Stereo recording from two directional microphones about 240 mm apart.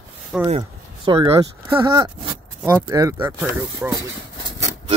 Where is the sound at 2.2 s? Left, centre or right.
Right.